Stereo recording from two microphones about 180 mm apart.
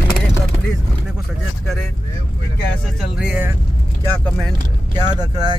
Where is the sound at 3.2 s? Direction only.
5° right (ahead or behind).